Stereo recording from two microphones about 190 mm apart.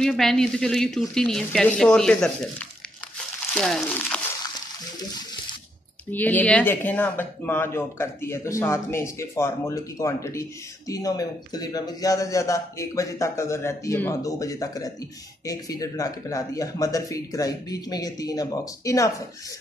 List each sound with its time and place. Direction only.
0.0 s speech: centre (ahead or behind)
3.5 s speech: 5° left (ahead or behind)
6.1 s speech: 10° left (ahead or behind)